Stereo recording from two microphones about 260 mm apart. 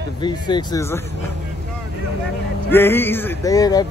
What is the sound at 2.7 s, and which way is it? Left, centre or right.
Male singing, centre.